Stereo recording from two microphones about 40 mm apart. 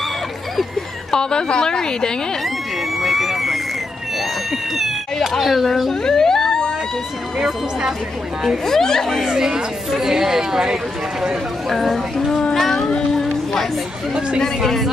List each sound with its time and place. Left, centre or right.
1.1 s a woman's voice: centre
3.0 s a sound: centre
5.3 s speech: centre
6.0 s a sound: centre
7.3 s speech: centre
8.6 s speech: centre
9.3 s speech: centre
11.7 s speech: centre
12.5 s music: centre
14.6 s speech: centre